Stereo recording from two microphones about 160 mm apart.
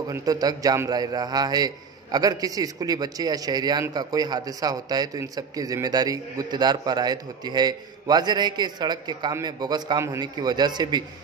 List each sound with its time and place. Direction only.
0.1 s a man's voice: 25° right (ahead or behind)